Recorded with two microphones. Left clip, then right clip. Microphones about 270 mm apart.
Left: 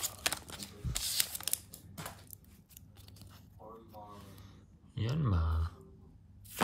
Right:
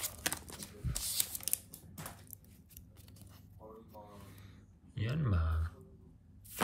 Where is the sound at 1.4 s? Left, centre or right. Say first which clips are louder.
Left 3 dB; left.